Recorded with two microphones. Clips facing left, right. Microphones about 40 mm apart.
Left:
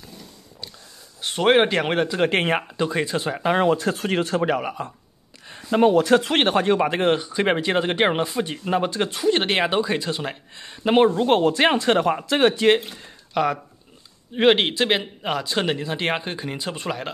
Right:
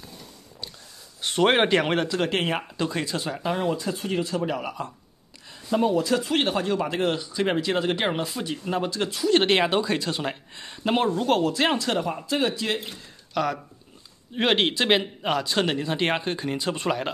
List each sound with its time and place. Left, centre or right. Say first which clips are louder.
1.2 s a man's voice: left 3 dB; centre
2.0 s speech: left 4 dB; centre
2.7 s speech: left 4 dB; centre
3.5 s speech: left 9 dB; left
4.6 s speech: left 3 dB; centre
5.5 s a sound: left 2 dB; left
5.8 s speech: left 6 dB; left
9.3 s speech: right 1 dB; centre
11.0 s speech: left 6 dB; left
11.4 s speech: left 5 dB; left
12.2 s speech: left 6 dB; left
13.3 s a man's voice: left 4 dB; centre